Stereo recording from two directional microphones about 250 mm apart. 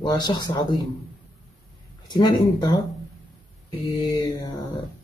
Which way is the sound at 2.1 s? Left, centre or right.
Centre.